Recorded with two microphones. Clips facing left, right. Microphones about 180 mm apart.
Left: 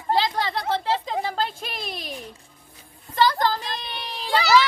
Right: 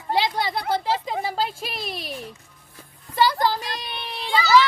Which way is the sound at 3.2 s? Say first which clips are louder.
Even; 10° right (ahead or behind).